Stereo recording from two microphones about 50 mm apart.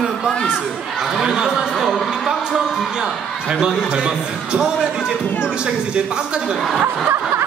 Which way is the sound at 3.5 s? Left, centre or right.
Centre.